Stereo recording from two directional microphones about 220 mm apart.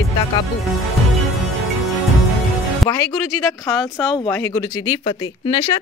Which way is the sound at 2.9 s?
10° left (ahead or behind).